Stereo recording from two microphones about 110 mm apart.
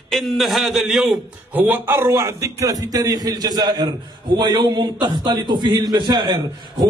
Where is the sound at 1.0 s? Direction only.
15° right (ahead or behind).